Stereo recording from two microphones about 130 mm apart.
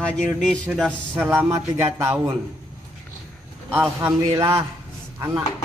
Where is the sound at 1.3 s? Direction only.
20° right (ahead or behind).